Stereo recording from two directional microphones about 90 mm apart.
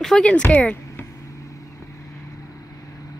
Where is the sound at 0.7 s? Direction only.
30° left (ahead or behind).